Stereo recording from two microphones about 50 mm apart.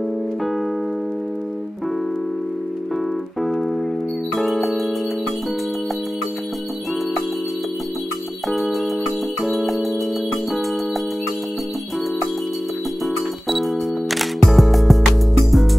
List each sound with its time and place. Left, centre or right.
3.4 s keyboard: centre
4.4 s music: centre
8.5 s music: centre
13.0 s music: centre